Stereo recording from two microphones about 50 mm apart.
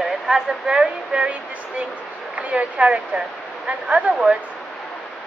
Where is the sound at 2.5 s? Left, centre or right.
Right.